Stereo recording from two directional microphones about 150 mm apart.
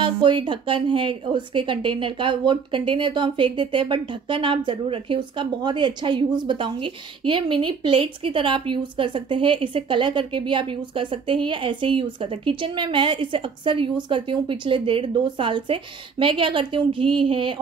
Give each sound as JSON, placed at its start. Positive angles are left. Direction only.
{"t": 0.0, "sound": "speech", "side_deg": -35}